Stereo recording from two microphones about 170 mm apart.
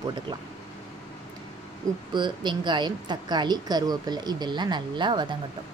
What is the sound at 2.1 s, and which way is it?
Speech, 25° right (ahead or behind).